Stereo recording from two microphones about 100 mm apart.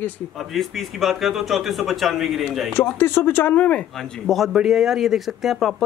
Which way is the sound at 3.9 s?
5° left (ahead or behind).